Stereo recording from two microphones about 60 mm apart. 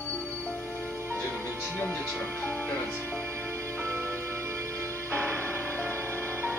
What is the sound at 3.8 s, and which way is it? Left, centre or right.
Music, right.